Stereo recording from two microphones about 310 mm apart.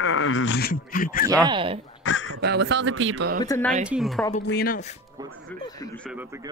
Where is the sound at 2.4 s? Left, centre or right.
Right.